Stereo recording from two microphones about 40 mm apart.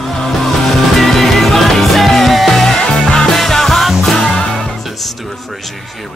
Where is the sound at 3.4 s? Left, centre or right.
Centre.